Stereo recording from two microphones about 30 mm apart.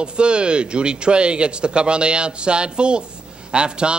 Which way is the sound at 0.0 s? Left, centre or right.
Right.